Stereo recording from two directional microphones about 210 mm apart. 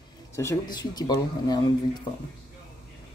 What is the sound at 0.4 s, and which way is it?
Speech, 15° left (ahead or behind).